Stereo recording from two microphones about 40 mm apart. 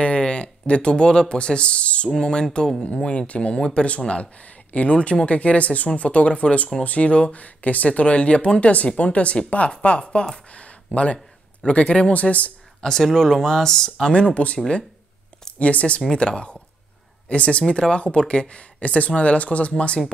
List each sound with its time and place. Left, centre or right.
0.0 s speech: left
2.1 s speech: centre
10.5 s a sound: left
10.9 s speech: left
12.1 s speech: left
12.8 s speech: centre
14.3 s speech: left
15.6 s speech: left
16.0 s speech: centre; by 19.7 s left